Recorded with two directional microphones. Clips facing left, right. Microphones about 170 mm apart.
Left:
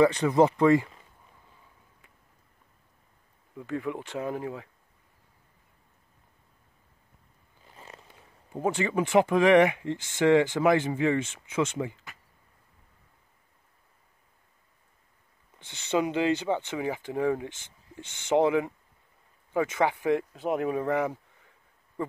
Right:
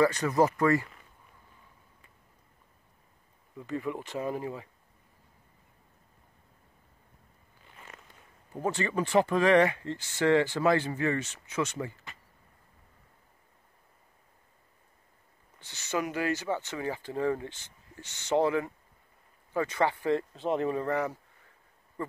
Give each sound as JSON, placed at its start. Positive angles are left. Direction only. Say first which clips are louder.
{"t": 0.0, "sound": "speech", "louder": "left 4 dB", "side_deg": 20}
{"t": 3.9, "sound": "speech", "louder": "even", "side_deg": 10}
{"t": 7.7, "sound": "a sound", "louder": "left 3 dB", "side_deg": 30}
{"t": 8.5, "sound": "speech", "louder": "left 3 dB", "side_deg": 15}
{"t": 15.9, "sound": "speech", "louder": "left 5 dB", "side_deg": 20}